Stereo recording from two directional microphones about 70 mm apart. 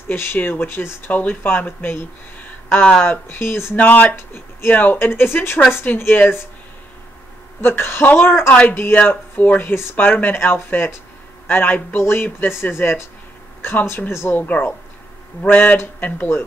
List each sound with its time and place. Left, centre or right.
0.1 s speech: left
2.7 s speech: centre
3.1 s speech: left
3.7 s speech: left
7.6 s speech: left